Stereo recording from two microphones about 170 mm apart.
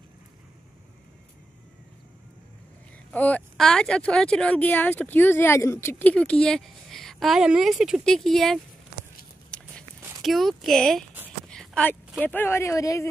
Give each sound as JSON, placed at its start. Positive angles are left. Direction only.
{"t": 3.1, "sound": "speech", "side_deg": 10}
{"t": 9.5, "sound": "walk", "side_deg": 5}
{"t": 10.2, "sound": "speech", "side_deg": 0}
{"t": 11.4, "sound": "a sound", "side_deg": 5}
{"t": 12.2, "sound": "speech", "side_deg": 10}